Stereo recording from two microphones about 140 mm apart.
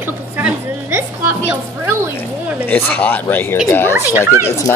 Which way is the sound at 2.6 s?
10° left (ahead or behind).